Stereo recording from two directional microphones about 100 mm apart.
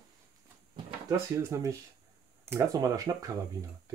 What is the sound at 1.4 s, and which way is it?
Speech, 30° right (ahead or behind).